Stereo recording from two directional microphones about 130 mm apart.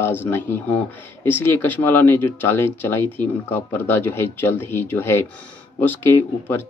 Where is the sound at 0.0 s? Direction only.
15° left (ahead or behind).